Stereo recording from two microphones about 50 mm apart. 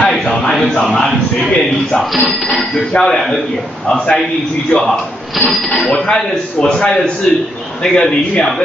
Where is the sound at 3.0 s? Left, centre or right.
Centre.